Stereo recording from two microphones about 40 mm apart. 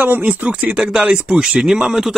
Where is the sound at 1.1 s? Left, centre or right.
Right.